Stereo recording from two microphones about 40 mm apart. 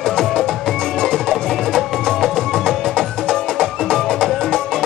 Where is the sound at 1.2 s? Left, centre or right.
Centre.